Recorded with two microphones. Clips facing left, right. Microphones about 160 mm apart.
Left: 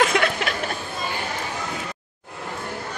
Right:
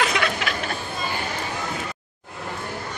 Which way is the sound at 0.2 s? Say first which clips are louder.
Left 3 dB; 50° left (ahead or behind).